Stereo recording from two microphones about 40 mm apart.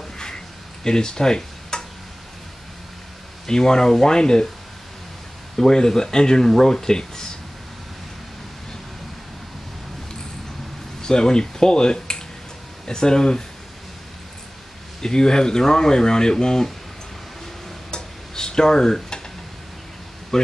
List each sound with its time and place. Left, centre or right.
0.8 s speech: centre
3.4 s speech: centre
5.6 s speech: centre
11.0 s speech: centre
15.0 s speech: centre
17.9 s stir: centre